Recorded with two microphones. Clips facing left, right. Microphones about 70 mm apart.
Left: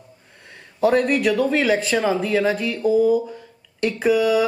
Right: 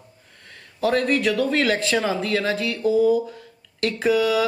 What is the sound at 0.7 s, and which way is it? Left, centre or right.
Speech, centre.